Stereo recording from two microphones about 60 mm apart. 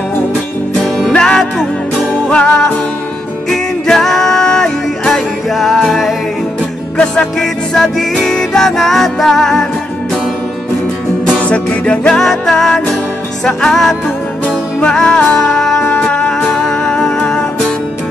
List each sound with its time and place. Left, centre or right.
0.7 s music: centre
11.2 s music: left
12.2 s music: centre